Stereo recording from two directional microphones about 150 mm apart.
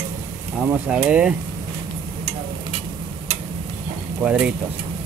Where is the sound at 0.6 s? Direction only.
5° right (ahead or behind).